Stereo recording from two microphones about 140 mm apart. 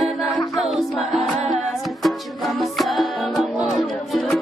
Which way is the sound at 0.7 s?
Centre (ahead or behind).